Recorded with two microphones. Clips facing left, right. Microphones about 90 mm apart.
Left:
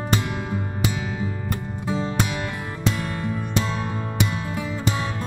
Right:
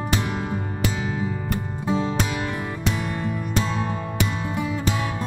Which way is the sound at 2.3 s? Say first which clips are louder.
Right 2 dB; 15° right (ahead or behind).